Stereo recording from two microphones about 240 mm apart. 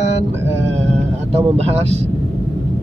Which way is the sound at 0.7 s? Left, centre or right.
Right.